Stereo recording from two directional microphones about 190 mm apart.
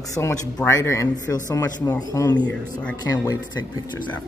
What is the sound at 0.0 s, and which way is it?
Speech, 15° left (ahead or behind).